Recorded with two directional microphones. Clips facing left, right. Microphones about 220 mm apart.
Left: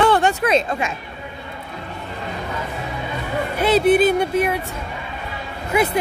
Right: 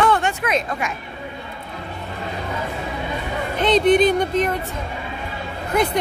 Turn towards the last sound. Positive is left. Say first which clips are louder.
# left 1 dB
turn(degrees=5)  # may be behind; listen again after turning